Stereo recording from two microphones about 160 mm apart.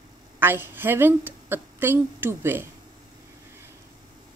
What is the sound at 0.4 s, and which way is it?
A woman's voice, 15° right (ahead or behind).